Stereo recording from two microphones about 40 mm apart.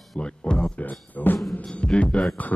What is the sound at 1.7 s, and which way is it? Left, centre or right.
Music, left.